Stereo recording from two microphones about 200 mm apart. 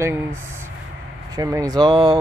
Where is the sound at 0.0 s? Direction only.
10° right (ahead or behind).